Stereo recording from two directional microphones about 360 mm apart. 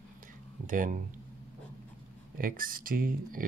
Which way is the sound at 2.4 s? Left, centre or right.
Right.